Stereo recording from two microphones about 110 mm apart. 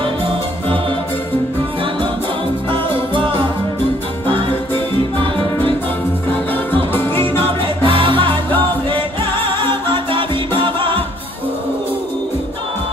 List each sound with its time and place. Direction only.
2.7 s music: 50° right (ahead or behind)
6.9 s music: 20° left (ahead or behind)
7.6 s music: 50° right (ahead or behind)